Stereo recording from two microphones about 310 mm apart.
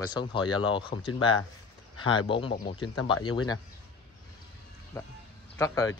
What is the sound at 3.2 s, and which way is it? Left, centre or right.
Speech, centre.